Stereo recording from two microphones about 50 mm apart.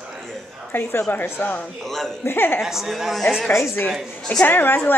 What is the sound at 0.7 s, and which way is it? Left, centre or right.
A woman's voice, left.